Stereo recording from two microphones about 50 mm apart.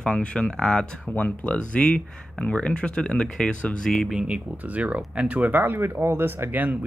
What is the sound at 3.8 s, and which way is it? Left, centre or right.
Speech, centre.